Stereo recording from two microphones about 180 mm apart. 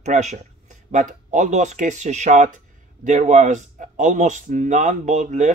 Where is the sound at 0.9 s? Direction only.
45° right (ahead or behind).